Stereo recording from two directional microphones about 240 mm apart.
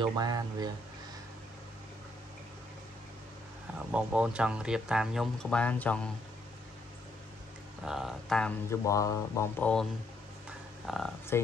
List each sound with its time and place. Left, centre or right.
0.0 s speech: centre
3.9 s speech: centre
7.8 s speech: centre
10.9 s speech: centre